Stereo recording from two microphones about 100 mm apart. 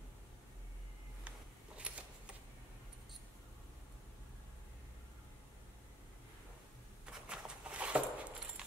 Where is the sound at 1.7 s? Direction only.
10° right (ahead or behind).